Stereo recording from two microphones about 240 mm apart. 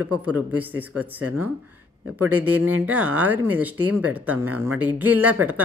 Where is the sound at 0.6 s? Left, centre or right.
Centre.